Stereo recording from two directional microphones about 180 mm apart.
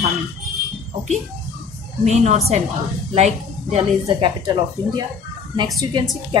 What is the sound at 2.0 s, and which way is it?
A woman's voice, 40° right (ahead or behind).